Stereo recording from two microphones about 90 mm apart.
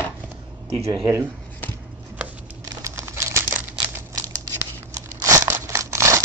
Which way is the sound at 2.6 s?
35° right (ahead or behind).